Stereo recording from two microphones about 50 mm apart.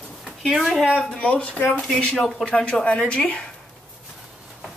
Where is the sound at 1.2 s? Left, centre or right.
Left.